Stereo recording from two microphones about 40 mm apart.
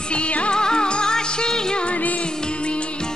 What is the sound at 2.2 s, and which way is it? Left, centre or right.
Music, left.